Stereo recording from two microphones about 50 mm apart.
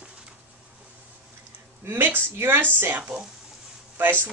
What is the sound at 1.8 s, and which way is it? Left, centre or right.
Speech, right.